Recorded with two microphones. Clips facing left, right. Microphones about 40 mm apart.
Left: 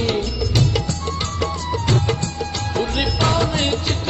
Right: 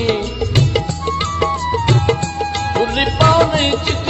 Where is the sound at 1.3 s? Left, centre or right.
Right.